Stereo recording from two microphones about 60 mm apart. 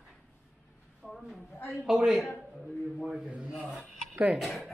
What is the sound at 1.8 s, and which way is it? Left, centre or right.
Speech, centre.